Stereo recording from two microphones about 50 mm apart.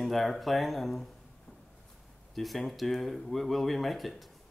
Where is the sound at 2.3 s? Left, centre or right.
Centre.